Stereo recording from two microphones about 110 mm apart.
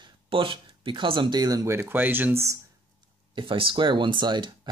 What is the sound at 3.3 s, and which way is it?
Speech, 50° right (ahead or behind).